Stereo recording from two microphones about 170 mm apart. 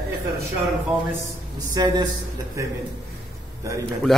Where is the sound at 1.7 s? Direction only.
25° right (ahead or behind).